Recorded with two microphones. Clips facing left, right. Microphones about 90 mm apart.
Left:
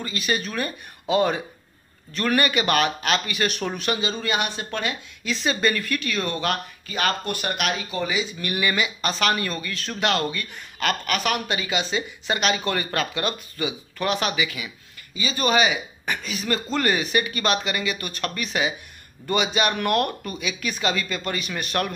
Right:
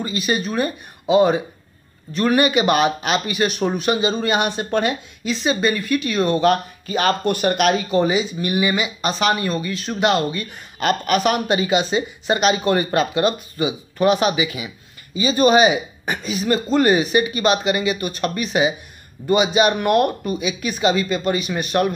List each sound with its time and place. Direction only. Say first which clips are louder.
0.0 s speech: right 5 dB; 20° right (ahead or behind)
5.2 s speech: right 3 dB; 10° right (ahead or behind)